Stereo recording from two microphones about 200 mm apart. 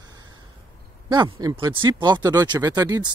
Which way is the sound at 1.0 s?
20° right (ahead or behind).